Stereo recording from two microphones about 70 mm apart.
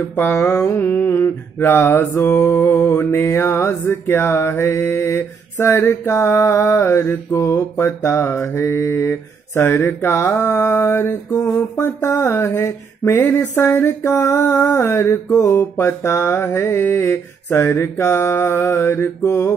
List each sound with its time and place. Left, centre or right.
0.1 s mantra: left
15.3 s music: left
16.4 s mantra: left
18.8 s music: left